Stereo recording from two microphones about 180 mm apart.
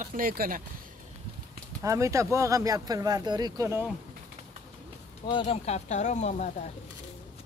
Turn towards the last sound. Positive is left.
turn(degrees=40)  # may be behind; listen again after turning